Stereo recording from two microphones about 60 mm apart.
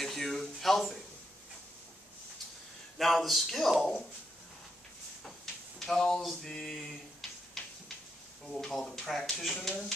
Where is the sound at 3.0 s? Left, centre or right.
Centre.